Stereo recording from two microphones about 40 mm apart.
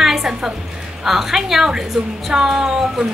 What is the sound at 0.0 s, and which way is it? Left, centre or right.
Music, centre.